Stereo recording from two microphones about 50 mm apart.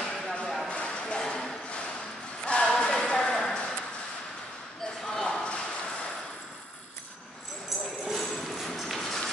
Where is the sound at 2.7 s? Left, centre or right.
Centre.